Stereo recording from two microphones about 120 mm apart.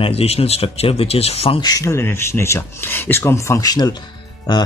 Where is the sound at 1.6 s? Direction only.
25° left (ahead or behind).